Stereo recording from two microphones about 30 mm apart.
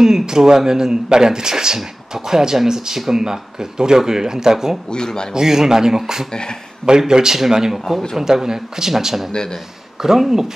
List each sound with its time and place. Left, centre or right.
0.0 s a man's voice: centre
4.8 s speech: left
5.3 s a man's voice: centre
9.3 s speech: left
10.0 s a man's voice: centre